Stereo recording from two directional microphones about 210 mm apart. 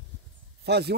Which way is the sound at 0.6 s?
50° right (ahead or behind).